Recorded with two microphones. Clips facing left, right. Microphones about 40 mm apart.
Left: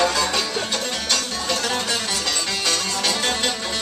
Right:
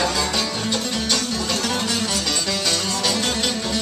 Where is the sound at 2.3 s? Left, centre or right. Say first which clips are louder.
Right 1 dB; left.